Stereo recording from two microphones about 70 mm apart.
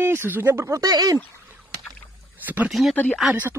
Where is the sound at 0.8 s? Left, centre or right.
Right.